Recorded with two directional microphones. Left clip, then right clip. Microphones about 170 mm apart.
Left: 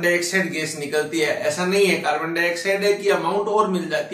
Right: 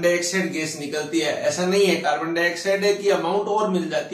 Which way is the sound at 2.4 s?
Centre (ahead or behind).